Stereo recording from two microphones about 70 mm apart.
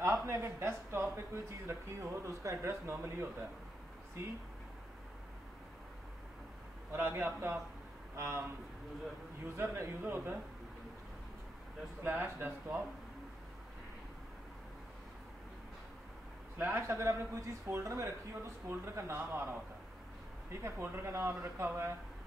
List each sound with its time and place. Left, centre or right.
0.0 s speech: right
6.9 s speech: right
9.6 s speech: right
12.0 s speech: right
16.5 s speech: right
20.6 s speech: right